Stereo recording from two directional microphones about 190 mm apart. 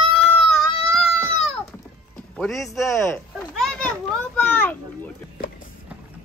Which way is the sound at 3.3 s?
Centre (ahead or behind).